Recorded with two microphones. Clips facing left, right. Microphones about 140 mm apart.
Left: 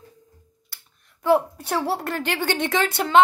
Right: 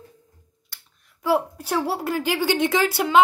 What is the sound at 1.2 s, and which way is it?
A woman's voice, centre (ahead or behind).